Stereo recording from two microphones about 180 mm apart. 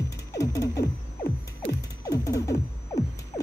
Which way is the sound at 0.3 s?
20° left (ahead or behind).